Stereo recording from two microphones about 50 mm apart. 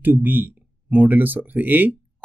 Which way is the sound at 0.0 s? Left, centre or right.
Right.